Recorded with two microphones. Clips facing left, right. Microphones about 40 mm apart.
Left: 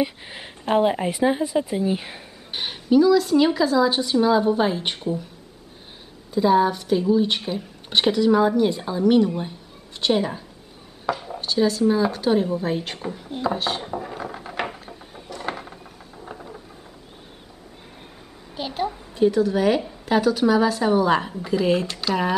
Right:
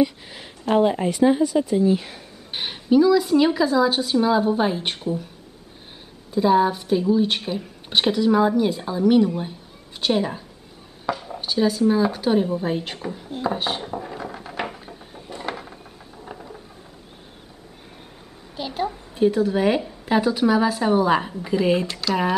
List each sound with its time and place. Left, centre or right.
0.0 s a woman's voice: left
2.5 s speech: centre
6.3 s a woman's voice: centre
11.2 s a sound: centre
11.8 s speech: centre
13.7 s wood: centre
15.2 s a sound: right
16.3 s a sound: centre
19.1 s a woman's voice: centre